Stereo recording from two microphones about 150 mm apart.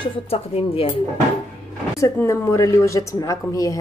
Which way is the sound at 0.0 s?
40° left (ahead or behind).